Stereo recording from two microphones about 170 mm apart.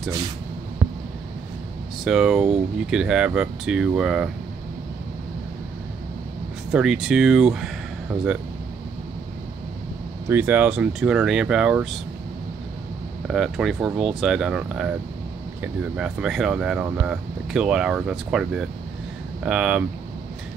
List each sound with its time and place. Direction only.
0.8 s a sound: 35° right (ahead or behind)
2.0 s speech: 5° right (ahead or behind)
6.7 s speech: 5° right (ahead or behind)
10.2 s speech: 10° right (ahead or behind)
13.3 s speech: centre (ahead or behind)